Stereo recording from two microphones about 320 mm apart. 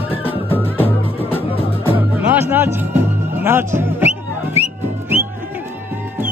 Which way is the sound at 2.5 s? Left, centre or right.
Centre.